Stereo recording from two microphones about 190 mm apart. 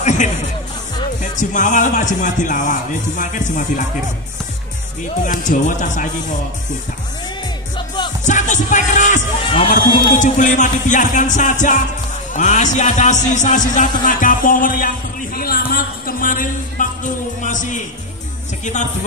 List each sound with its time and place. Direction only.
0.0 s music: 40° left (ahead or behind)
1.2 s speech: 40° left (ahead or behind)
5.2 s speech: 45° left (ahead or behind)
7.7 s music: 25° left (ahead or behind)
8.2 s music: 40° left (ahead or behind)
9.7 s speech: 45° left (ahead or behind)